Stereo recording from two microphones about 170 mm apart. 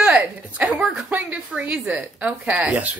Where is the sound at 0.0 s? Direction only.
5° right (ahead or behind).